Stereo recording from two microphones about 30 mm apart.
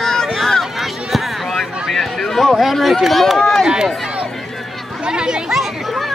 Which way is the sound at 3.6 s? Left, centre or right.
Right.